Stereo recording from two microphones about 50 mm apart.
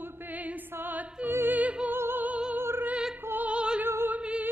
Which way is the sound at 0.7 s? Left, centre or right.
Right.